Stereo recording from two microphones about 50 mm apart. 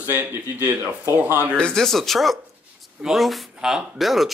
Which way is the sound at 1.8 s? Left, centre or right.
Centre.